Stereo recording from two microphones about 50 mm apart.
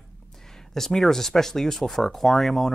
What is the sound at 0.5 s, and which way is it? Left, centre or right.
Speech, centre.